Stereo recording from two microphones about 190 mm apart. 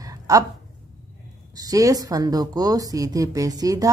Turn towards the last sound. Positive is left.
turn(degrees=-20)  # may be behind; listen again after turning